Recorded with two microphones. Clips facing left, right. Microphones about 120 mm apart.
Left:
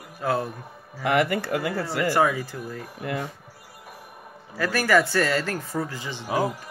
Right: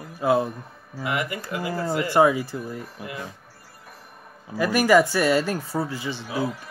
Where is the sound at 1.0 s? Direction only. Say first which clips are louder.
Left 6 dB; 60° left (ahead or behind).